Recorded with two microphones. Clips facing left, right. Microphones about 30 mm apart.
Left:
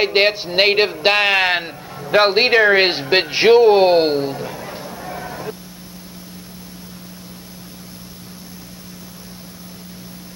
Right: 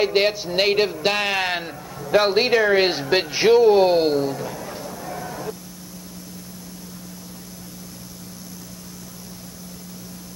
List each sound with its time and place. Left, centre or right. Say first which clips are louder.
0.0 s a man's voice: left 3 dB; left